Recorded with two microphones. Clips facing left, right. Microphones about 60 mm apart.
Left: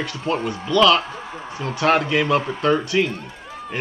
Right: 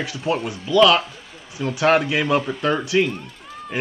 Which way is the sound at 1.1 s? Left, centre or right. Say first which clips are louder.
Left 9 dB; left.